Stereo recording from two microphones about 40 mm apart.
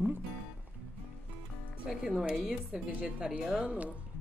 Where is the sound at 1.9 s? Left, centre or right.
Centre.